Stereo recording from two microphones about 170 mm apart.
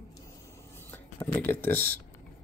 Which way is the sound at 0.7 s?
15° left (ahead or behind).